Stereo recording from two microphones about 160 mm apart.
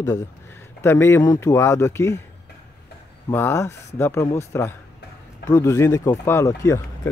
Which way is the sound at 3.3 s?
15° left (ahead or behind).